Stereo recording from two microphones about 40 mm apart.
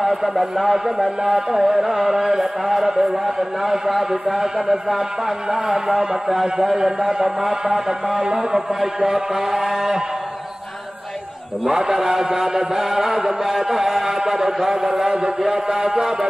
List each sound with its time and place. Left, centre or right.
0.0 s speech: centre
11.7 s speech: centre